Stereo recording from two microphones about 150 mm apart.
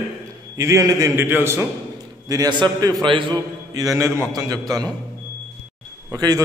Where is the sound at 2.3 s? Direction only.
25° right (ahead or behind).